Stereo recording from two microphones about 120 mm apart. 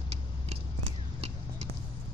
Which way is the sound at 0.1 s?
55° right (ahead or behind).